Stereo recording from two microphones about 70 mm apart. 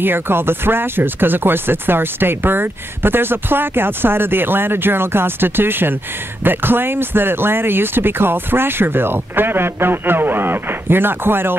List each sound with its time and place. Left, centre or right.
0.0 s speech: right